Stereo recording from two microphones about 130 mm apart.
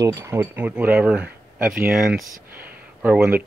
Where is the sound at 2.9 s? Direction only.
10° right (ahead or behind).